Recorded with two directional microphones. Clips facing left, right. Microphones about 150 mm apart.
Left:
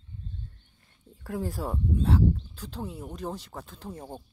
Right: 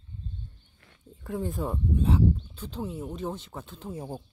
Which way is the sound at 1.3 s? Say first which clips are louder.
Right 1 dB; centre (ahead or behind).